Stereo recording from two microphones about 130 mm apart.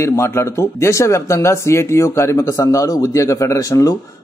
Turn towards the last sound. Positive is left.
turn(degrees=25)  # may be behind; listen again after turning